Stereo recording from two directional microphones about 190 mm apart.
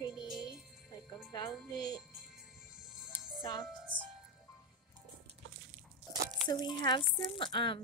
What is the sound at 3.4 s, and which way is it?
Music, 25° left (ahead or behind).